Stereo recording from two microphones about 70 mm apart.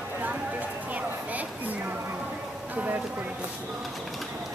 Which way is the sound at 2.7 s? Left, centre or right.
Right.